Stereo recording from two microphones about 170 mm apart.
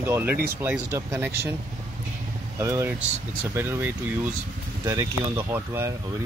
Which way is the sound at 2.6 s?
15° right (ahead or behind).